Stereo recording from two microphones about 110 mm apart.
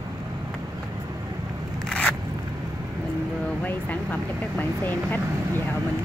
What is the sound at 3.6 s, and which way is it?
Vehicle, 15° left (ahead or behind).